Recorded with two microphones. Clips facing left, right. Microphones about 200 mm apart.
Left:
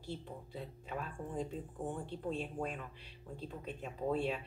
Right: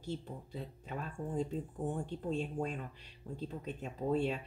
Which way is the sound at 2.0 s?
40° right (ahead or behind).